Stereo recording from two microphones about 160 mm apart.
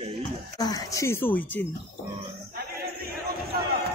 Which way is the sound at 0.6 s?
20° left (ahead or behind).